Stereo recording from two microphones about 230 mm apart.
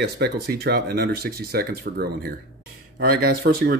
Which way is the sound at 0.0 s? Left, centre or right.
Right.